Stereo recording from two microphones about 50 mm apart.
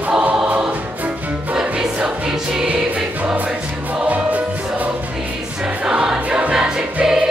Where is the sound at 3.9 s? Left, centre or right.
Right.